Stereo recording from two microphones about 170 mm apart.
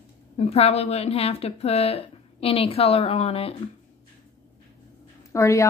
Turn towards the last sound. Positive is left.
turn(degrees=15)  # may be behind; listen again after turning